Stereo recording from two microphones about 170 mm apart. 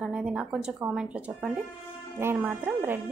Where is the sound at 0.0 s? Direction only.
5° right (ahead or behind).